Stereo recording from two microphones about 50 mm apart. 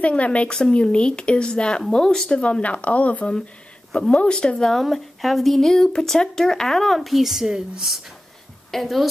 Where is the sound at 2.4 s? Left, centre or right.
Left.